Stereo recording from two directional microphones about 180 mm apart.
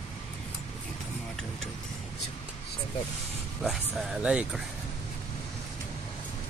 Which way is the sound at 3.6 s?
Centre (ahead or behind).